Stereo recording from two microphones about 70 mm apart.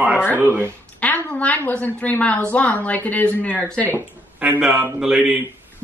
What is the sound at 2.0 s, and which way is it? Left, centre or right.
Speech, left.